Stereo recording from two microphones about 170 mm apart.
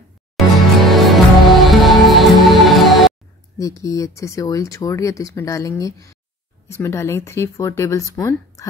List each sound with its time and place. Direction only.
0.4 s music: centre (ahead or behind)
3.8 s speech: 20° left (ahead or behind)